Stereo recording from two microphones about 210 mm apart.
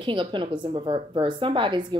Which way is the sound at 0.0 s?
25° right (ahead or behind).